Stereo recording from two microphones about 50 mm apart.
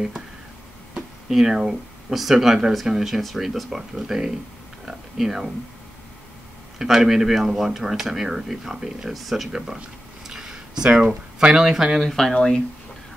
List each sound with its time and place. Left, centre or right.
0.9 s speech: centre
6.8 s speech: centre
9.5 s speech: centre
12.0 s speech: centre